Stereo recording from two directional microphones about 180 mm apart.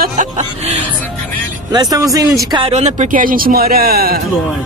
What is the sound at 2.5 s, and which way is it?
Speech, 30° right (ahead or behind).